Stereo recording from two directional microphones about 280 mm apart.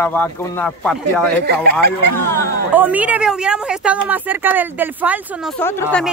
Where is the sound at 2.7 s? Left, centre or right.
Centre.